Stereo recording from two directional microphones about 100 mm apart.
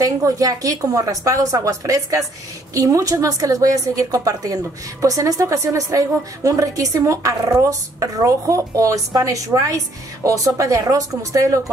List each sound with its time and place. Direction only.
0.0 s a woman's voice: 35° right (ahead or behind)